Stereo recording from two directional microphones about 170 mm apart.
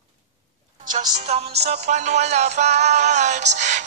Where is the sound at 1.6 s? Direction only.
45° right (ahead or behind).